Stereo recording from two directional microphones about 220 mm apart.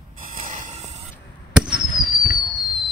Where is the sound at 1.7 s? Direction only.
40° left (ahead or behind).